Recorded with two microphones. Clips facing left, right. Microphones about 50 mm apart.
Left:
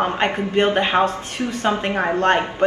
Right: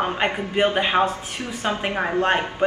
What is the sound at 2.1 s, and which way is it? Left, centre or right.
Speech, centre.